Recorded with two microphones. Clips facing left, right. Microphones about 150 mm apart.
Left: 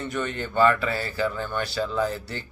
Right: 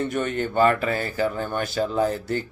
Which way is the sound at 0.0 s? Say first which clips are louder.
Right 5 dB; 50° right (ahead or behind).